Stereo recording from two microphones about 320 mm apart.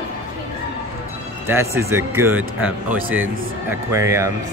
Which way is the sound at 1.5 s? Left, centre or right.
Centre.